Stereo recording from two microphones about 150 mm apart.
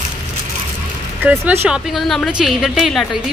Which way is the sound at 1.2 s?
10° right (ahead or behind).